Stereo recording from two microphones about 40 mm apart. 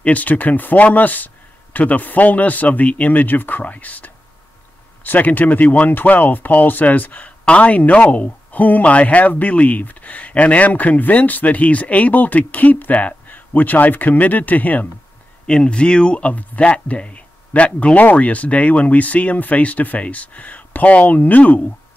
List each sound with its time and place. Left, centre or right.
0.0 s speech: left
15.4 s speech: left